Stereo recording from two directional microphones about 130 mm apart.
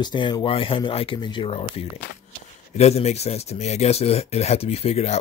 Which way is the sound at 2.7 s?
55° left (ahead or behind).